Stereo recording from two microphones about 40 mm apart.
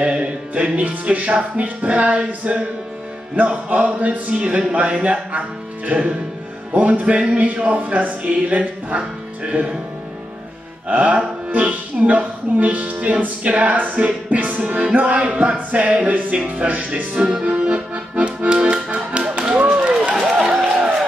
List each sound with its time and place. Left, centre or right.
0.0 s music: right
0.7 s music: right
4.4 s music: right
5.0 s music: right
10.9 s music: right
11.5 s speech: right
14.0 s music: right
17.1 s music: right
17.5 s accordion: right
18.9 s music: right
20.2 s a sound: centre